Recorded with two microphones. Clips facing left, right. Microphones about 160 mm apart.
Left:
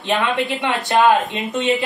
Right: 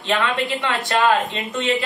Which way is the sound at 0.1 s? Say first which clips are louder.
Left 2 dB; 20° left (ahead or behind).